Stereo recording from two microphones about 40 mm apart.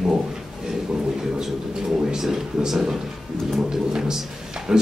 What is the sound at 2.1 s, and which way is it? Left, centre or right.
Speech, centre.